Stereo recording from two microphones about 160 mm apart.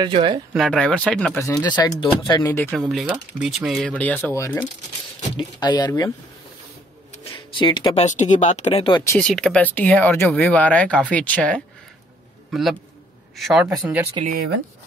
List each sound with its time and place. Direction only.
0.0 s speech: 30° right (ahead or behind)
0.6 s speech: 5° left (ahead or behind)
1.6 s speech: 25° left (ahead or behind)
2.9 s speech: 5° right (ahead or behind); by 6.1 s 20° left (ahead or behind)
7.3 s speech: 30° left (ahead or behind)
8.0 s speech: 50° left (ahead or behind)
8.8 s speech: 25° left (ahead or behind)
9.2 s a man's voice: 5° left (ahead or behind); by 14.1 s 10° right (ahead or behind)